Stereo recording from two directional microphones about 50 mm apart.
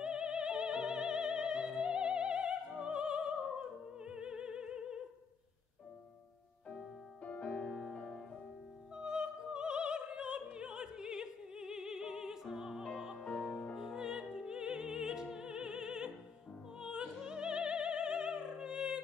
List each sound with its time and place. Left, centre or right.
0.0 s music: centre
7.2 s music: left
8.9 s opera: centre
12.8 s music: centre
16.8 s opera: centre